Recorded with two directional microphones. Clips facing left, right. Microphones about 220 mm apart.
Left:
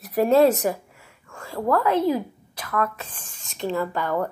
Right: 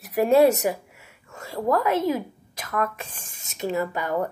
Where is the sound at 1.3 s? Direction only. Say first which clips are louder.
Even; 25° right (ahead or behind).